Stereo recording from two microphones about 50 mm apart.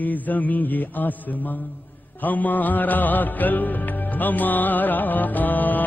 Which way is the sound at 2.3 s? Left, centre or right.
Left.